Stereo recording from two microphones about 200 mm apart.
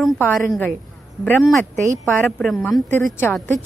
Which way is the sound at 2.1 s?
5° left (ahead or behind).